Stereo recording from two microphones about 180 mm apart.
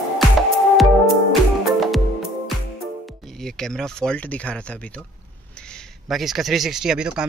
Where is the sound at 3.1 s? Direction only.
Centre (ahead or behind).